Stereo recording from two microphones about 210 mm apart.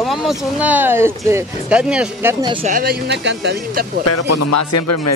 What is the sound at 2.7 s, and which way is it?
Speech, 45° right (ahead or behind).